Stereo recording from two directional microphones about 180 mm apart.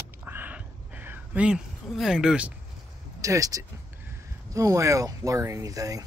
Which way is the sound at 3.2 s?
20° right (ahead or behind).